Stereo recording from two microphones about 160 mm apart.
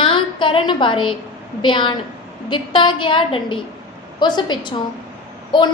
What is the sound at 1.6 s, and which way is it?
A woman's voice, 30° left (ahead or behind).